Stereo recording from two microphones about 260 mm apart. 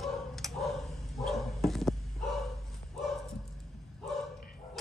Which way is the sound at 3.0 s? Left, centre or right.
Centre.